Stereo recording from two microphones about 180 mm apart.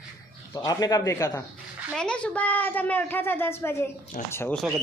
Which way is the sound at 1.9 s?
5° left (ahead or behind).